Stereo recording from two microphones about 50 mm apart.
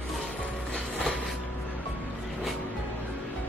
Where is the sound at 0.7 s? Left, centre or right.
Left.